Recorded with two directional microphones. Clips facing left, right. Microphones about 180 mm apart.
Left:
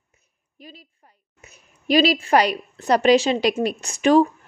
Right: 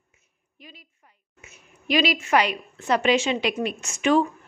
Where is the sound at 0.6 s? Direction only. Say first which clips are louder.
Left 5 dB; 35° left (ahead or behind).